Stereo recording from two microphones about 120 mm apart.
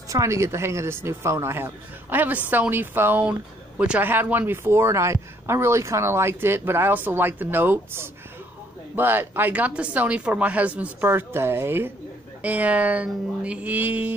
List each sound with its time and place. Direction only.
0.1 s speech: 25° right (ahead or behind)